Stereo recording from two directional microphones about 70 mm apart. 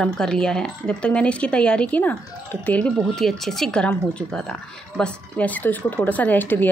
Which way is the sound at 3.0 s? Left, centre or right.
Centre.